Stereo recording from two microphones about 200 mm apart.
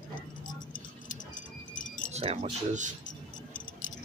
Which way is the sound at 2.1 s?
30° right (ahead or behind).